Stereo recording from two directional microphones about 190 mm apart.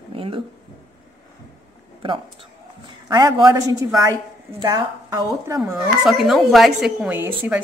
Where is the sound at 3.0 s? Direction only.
20° right (ahead or behind).